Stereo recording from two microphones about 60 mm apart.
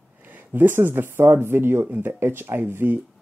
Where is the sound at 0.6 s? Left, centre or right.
Right.